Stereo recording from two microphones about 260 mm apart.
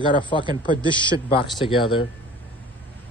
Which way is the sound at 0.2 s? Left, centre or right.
Centre.